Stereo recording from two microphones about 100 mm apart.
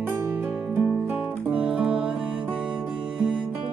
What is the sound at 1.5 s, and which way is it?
Music, 10° right (ahead or behind).